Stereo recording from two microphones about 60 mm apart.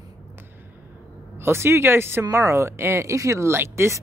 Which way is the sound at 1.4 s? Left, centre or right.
Right.